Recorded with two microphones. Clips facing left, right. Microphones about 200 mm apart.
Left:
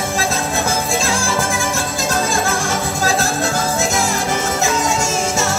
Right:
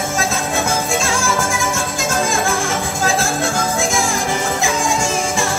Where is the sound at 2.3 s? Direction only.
Centre (ahead or behind).